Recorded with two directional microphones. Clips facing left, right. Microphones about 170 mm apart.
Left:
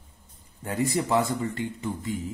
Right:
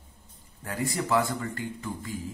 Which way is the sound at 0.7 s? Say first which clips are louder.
Left 3 dB; 20° left (ahead or behind).